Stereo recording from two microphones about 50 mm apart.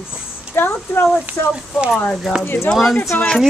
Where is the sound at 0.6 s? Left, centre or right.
Left.